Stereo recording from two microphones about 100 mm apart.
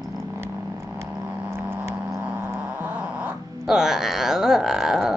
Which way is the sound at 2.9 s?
10° right (ahead or behind).